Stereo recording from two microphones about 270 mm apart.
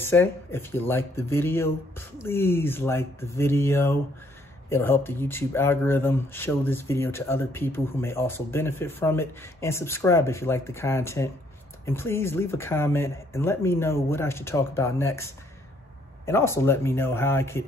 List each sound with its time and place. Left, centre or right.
0.0 s speech: centre
16.3 s speech: centre